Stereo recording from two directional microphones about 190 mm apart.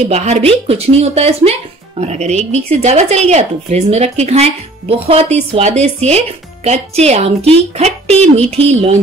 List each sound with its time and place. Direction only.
0.1 s speech: 35° right (ahead or behind)